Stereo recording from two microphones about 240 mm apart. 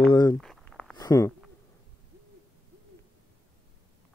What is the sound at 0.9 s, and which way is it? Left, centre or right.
Speech, centre.